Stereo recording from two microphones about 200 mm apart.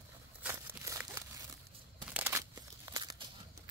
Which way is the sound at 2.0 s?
10° right (ahead or behind).